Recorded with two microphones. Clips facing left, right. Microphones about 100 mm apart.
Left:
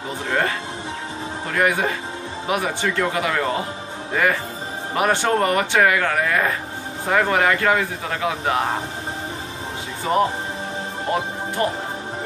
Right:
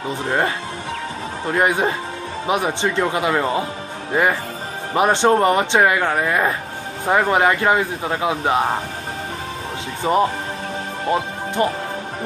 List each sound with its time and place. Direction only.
1.5 s speech: 25° right (ahead or behind)
10.1 s speech: 25° right (ahead or behind)
11.6 s speech: 20° right (ahead or behind)